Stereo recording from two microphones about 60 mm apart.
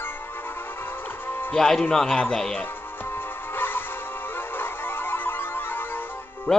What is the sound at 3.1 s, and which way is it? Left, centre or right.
Music, left.